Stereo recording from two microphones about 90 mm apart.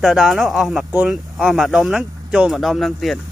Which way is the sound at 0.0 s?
Centre (ahead or behind).